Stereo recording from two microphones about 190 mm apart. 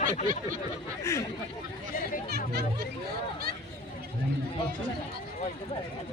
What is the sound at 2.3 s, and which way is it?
Music, 55° right (ahead or behind).